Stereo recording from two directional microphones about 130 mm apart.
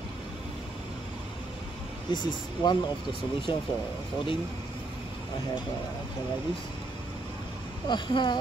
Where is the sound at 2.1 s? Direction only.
35° left (ahead or behind).